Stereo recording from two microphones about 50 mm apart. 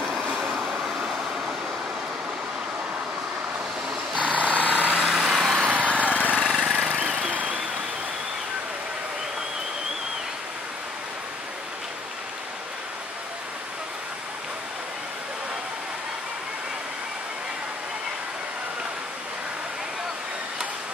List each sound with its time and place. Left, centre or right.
0.6 s vehicle: centre
4.2 s vehicle: right
5.0 s vehicle: centre
5.7 s lawn mower: right
6.6 s a sound: right